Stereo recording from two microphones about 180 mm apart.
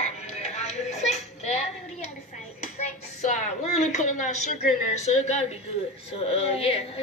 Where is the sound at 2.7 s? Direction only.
40° left (ahead or behind).